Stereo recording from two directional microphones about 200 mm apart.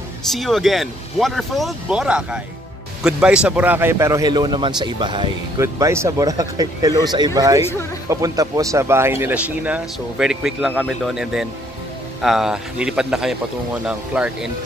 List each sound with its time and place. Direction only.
0.3 s a man's voice: centre (ahead or behind)